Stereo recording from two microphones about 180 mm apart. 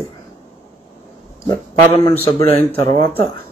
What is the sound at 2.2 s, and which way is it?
Speech, 30° left (ahead or behind).